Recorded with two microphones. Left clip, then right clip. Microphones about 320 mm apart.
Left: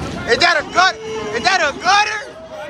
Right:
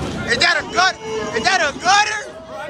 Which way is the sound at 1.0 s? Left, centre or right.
Centre.